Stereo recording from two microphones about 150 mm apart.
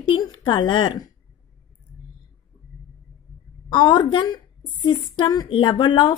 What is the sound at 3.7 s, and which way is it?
Speech, 35° left (ahead or behind).